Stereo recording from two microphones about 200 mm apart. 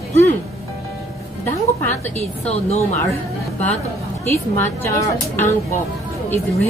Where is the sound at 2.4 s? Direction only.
35° left (ahead or behind).